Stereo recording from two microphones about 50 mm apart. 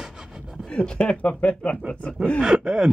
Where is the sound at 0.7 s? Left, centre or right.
Centre.